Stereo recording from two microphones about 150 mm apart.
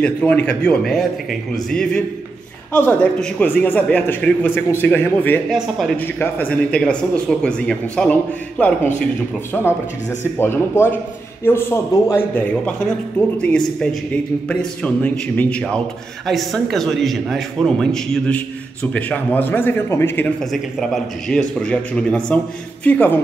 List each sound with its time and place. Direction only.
0.0 s a man's voice: 10° left (ahead or behind)
5.5 s a man's voice: centre (ahead or behind)
5.9 s a man's voice: 15° left (ahead or behind)
20.5 s a man's voice: centre (ahead or behind)